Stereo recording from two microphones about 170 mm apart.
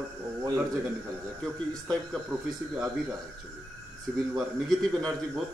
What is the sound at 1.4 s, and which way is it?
Speech, centre (ahead or behind).